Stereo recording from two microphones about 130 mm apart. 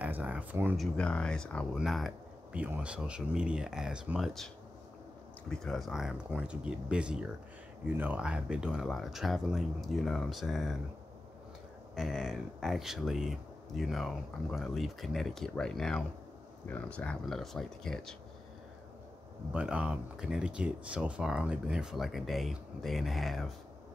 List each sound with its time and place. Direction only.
0.0 s speech: 10° right (ahead or behind)
0.7 s speech: 10° left (ahead or behind)
2.5 s speech: 10° right (ahead or behind)
5.5 s speech: 5° left (ahead or behind)
11.9 s speech: centre (ahead or behind)
19.5 s speech: 10° right (ahead or behind)